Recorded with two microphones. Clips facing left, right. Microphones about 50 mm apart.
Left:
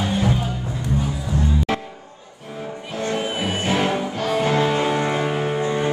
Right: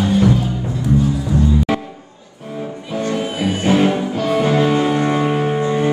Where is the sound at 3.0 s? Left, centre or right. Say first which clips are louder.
Right 3 dB; centre.